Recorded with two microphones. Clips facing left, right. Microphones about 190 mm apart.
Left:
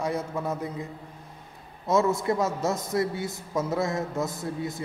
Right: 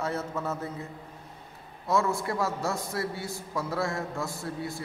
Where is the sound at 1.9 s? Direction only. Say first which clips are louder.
Left 4 dB; 20° left (ahead or behind).